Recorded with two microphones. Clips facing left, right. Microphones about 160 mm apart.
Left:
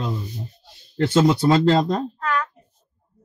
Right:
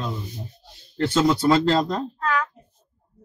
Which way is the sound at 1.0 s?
25° left (ahead or behind).